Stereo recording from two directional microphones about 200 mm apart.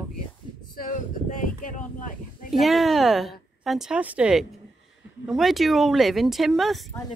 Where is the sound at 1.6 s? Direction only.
40° left (ahead or behind).